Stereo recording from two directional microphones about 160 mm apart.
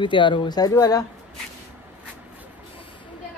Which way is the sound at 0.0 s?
30° left (ahead or behind).